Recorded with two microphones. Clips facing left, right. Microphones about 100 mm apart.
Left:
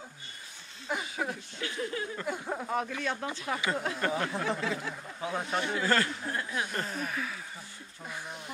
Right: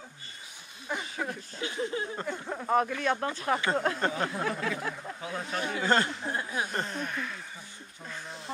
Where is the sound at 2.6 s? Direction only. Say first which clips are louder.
Right 8 dB; 50° right (ahead or behind).